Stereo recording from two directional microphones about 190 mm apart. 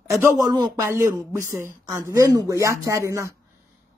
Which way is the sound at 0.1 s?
15° right (ahead or behind).